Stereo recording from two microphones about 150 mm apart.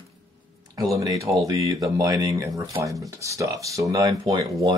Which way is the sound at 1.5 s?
25° right (ahead or behind).